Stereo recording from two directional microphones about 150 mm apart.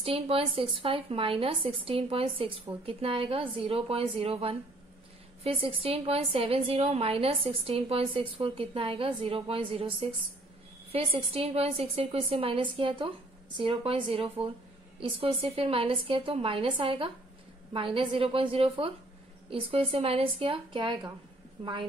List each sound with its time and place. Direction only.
0.0 s a woman's voice: 40° right (ahead or behind)